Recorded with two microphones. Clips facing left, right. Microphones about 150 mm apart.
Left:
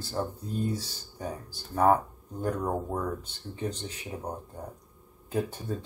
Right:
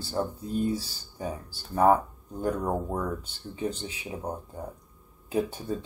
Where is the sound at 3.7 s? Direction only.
10° right (ahead or behind).